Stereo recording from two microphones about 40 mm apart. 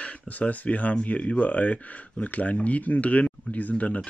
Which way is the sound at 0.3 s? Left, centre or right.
Left.